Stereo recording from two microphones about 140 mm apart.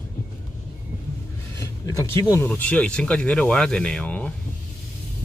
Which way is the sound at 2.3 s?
15° left (ahead or behind).